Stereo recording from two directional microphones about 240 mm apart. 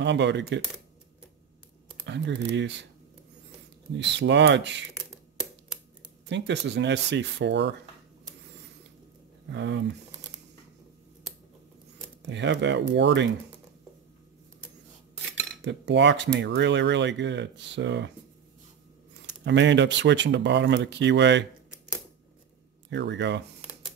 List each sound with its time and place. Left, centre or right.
0.0 s speech: right
2.0 s speech: right
3.9 s speech: right
6.2 s speech: right
9.5 s speech: right
12.2 s speech: right
15.6 s speech: right
19.4 s speech: right
22.8 s speech: right